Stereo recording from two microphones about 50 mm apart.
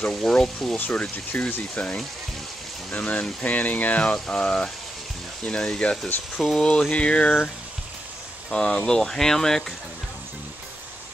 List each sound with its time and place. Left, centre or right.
0.1 s speech: centre
0.7 s speech: left
4.1 s speech: centre